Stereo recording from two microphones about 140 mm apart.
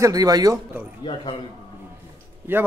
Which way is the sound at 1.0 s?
40° left (ahead or behind).